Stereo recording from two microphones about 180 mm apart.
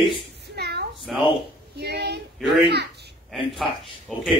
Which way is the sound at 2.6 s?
70° right (ahead or behind).